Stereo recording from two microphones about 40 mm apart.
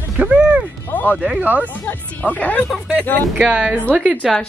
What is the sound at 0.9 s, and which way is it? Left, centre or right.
Speech, left.